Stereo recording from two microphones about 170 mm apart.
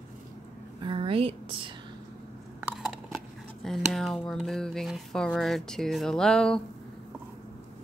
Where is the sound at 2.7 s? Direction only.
Centre (ahead or behind).